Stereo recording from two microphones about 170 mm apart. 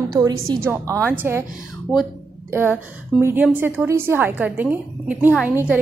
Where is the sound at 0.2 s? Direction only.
15° right (ahead or behind).